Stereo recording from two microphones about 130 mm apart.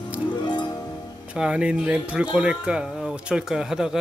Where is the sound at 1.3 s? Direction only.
5° right (ahead or behind).